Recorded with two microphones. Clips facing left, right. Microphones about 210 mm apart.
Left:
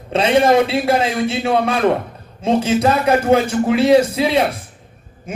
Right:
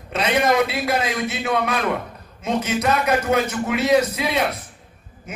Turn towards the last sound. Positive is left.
turn(degrees=30)  # may be behind; listen again after turning